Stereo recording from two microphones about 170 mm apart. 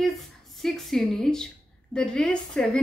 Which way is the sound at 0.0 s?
Centre (ahead or behind).